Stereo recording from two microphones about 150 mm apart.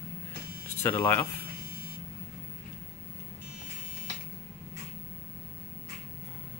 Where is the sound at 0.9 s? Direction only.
15° left (ahead or behind).